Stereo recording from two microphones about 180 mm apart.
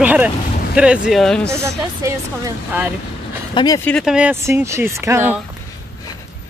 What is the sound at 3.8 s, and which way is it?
Speech, 5° left (ahead or behind).